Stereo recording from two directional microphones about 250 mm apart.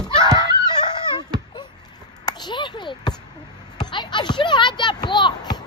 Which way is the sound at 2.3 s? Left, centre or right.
Centre.